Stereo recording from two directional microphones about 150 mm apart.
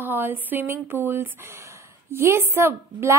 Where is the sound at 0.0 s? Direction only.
15° right (ahead or behind).